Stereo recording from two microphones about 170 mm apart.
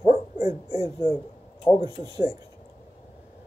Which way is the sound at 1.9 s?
20° right (ahead or behind).